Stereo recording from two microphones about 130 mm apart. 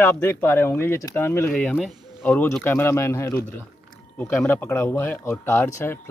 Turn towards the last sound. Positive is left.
turn(degrees=20)  # may be behind; listen again after turning